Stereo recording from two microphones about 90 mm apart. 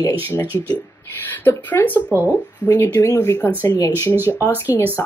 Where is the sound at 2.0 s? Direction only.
20° right (ahead or behind).